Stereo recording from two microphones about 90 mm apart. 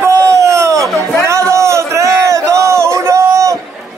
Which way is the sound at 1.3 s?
35° right (ahead or behind).